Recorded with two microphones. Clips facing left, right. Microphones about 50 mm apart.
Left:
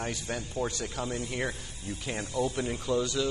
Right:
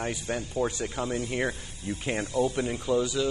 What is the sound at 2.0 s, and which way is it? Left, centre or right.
Speech, right.